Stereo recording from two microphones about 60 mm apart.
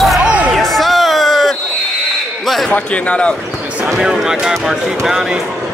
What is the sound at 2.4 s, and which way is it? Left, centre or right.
Basketball bounce, centre.